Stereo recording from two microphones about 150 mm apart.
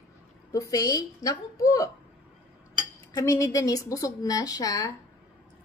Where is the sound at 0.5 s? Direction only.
20° left (ahead or behind).